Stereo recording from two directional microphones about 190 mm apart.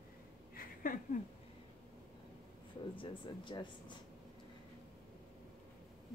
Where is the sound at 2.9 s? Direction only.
25° left (ahead or behind).